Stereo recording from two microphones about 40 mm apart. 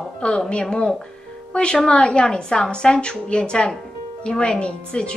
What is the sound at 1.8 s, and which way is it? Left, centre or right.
A woman's voice, left.